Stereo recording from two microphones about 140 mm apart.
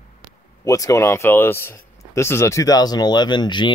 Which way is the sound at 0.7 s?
25° left (ahead or behind).